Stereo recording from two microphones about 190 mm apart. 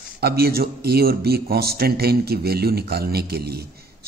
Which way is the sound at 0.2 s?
55° right (ahead or behind).